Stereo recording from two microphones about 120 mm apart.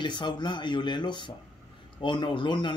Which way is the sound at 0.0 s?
40° left (ahead or behind).